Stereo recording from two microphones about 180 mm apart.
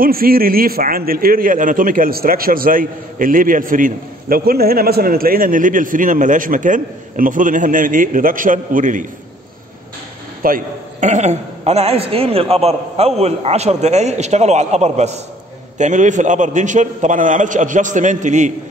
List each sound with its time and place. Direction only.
0.0 s a man's voice: 55° right (ahead or behind)
10.4 s a man's voice: 45° right (ahead or behind)